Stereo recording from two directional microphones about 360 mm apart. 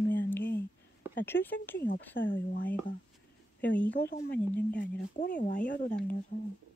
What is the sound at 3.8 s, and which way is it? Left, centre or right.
Speech, left.